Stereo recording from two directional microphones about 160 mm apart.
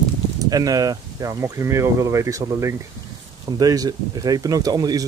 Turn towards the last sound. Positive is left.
turn(degrees=-25)  # may be behind; listen again after turning